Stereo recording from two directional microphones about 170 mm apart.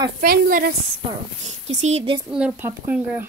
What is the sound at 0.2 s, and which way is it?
Speech, 60° right (ahead or behind).